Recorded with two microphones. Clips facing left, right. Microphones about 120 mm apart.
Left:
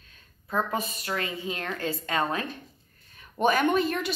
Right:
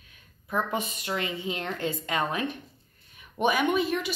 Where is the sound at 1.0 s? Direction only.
20° right (ahead or behind).